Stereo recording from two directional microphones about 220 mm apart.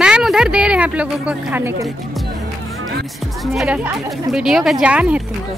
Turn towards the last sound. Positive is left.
turn(degrees=-5)  # may be behind; listen again after turning